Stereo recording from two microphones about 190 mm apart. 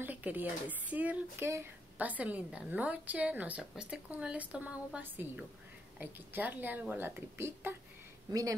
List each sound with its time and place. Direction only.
0.0 s speech: 10° right (ahead or behind)